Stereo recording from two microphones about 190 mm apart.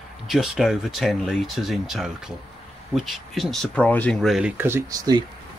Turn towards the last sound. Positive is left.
turn(degrees=-20)  # may be behind; listen again after turning